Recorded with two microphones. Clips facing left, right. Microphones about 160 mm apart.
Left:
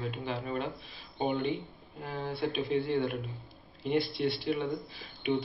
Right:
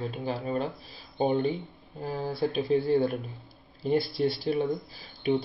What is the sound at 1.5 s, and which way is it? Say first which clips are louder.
Speech: even; centre (ahead or behind).